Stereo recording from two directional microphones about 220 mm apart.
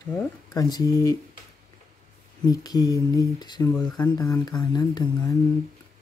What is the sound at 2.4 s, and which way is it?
Speech, 15° left (ahead or behind).